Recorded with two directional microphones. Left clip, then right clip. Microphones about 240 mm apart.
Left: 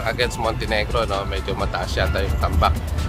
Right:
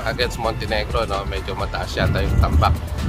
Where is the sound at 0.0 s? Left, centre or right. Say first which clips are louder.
Even; centre.